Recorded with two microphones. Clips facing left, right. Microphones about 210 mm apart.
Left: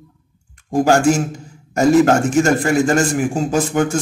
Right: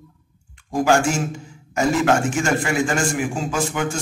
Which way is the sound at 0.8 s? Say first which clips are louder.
Left 4 dB; 40° left (ahead or behind).